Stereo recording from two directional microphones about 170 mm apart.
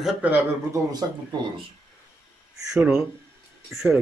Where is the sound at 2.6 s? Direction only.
5° right (ahead or behind).